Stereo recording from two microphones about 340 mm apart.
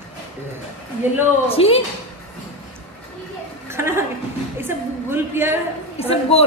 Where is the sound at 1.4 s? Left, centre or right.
Centre.